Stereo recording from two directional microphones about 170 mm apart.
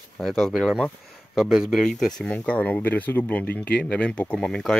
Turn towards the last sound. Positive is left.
turn(degrees=5)  # may be behind; listen again after turning